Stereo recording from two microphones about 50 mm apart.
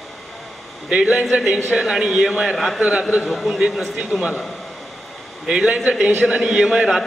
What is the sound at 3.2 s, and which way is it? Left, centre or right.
Speech, centre.